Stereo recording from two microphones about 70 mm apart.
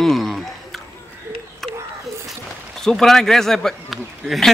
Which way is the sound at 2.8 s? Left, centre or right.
Centre.